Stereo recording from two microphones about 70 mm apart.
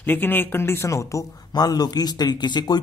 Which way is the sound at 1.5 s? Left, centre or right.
Left.